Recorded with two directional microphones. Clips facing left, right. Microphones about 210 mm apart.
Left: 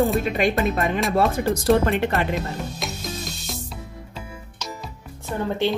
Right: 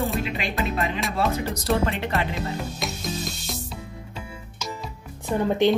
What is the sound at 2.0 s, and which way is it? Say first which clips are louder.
Speech: left 3 dB; 50° left (ahead or behind).